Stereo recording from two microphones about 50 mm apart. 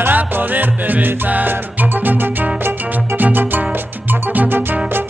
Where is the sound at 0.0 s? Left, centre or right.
Right.